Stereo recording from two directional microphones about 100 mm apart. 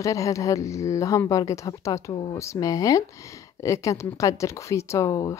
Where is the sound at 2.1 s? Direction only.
50° left (ahead or behind).